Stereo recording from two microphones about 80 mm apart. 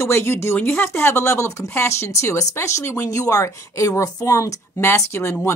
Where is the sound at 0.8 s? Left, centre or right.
Left.